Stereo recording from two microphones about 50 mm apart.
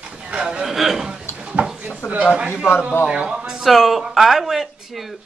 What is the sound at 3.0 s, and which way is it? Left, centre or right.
A man's voice, centre.